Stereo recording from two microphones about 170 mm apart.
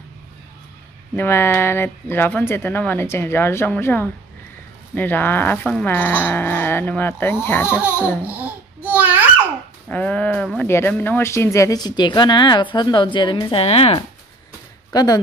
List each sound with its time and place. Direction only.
1.1 s speech: 15° left (ahead or behind)
7.7 s speech: 10° right (ahead or behind)
8.2 s babbling: 10° right (ahead or behind)
9.8 s speech: 10° left (ahead or behind); by 14.0 s 35° left (ahead or behind)
14.9 s speech: 20° left (ahead or behind)